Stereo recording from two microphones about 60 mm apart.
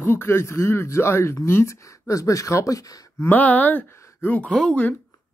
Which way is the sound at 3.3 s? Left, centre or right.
Left.